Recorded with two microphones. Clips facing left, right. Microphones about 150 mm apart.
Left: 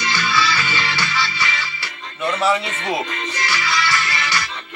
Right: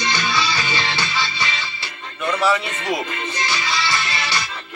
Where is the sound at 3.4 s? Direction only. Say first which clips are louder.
Left 2 dB; 25° right (ahead or behind).